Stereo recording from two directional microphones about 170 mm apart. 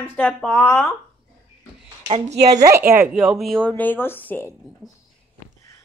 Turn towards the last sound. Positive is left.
turn(degrees=10)  # may be behind; listen again after turning